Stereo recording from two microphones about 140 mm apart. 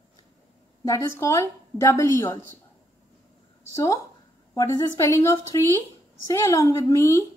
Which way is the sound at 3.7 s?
25° left (ahead or behind).